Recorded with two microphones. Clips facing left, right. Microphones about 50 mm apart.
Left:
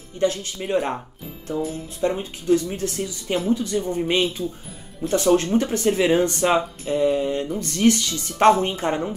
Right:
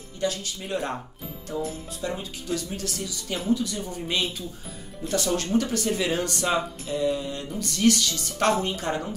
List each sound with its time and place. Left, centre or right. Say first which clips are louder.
0.2 s speech: left 6 dB; left
2.0 s speech: left 10 dB; left
4.4 s speech: left 9 dB; left
5.1 s speech: left 6 dB; left